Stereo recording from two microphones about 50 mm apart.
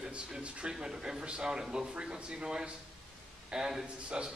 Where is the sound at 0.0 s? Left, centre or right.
Centre.